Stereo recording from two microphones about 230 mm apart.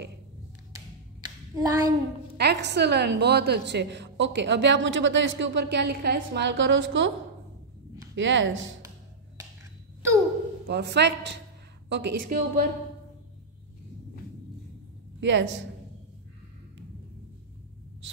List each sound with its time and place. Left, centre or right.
1.2 s a sound: centre
2.3 s a woman's voice: right
8.2 s speech: right
10.7 s a woman's voice: right
15.1 s a woman's voice: right